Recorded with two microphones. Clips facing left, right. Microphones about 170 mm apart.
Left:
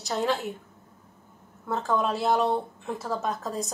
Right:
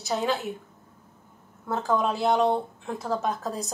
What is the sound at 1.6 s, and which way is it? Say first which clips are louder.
A woman's voice: right 1 dB; centre (ahead or behind).